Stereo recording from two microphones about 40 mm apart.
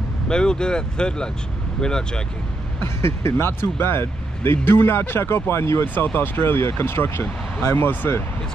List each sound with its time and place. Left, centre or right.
0.3 s speech: centre
2.8 s speech: left
6.1 s speech: left